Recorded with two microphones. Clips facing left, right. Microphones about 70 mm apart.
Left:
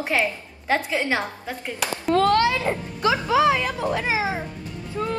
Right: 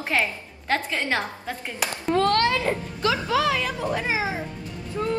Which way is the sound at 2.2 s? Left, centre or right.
Centre.